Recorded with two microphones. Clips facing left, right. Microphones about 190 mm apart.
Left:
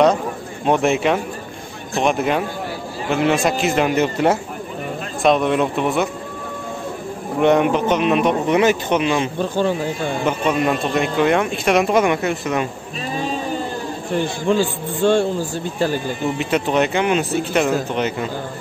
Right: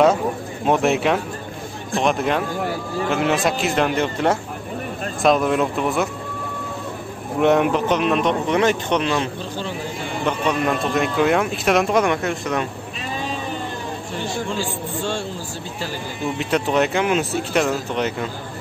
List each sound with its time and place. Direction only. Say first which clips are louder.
0.7 s speech: left 1 dB; centre (ahead or behind)
7.3 s speech: left 1 dB; centre (ahead or behind)
9.4 s speech: left 9 dB; 50° left (ahead or behind)
10.2 s speech: left 1 dB; 5° left (ahead or behind)
14.5 s a man's voice: left 7 dB; 55° left (ahead or behind)
16.3 s speech: even; centre (ahead or behind)